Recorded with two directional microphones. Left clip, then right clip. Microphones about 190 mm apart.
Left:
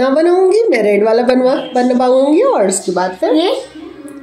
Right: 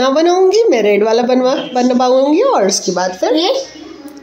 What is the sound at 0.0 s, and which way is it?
A woman's voice, 5° right (ahead or behind).